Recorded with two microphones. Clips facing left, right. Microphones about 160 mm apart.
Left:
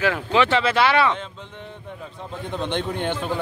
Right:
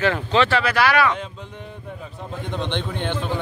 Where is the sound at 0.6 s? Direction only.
25° left (ahead or behind).